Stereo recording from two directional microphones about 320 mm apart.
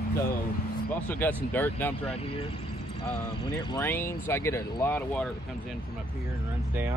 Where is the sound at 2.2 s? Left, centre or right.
Centre.